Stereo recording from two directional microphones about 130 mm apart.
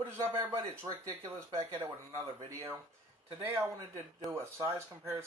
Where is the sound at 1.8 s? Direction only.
35° right (ahead or behind).